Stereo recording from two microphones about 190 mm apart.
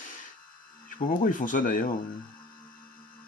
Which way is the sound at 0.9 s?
45° left (ahead or behind).